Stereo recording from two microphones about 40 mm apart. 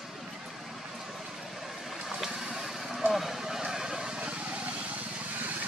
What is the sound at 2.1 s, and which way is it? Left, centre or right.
Vehicle, centre.